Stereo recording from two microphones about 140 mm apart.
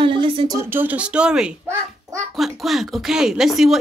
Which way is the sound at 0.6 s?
15° right (ahead or behind).